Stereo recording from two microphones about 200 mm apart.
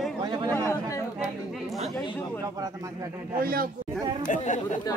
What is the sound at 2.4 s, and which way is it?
Speech, 15° right (ahead or behind).